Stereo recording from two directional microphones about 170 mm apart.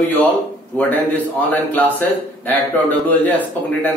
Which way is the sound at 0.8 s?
10° left (ahead or behind).